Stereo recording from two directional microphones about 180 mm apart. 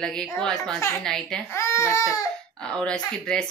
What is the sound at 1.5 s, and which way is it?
Speech, 15° left (ahead or behind).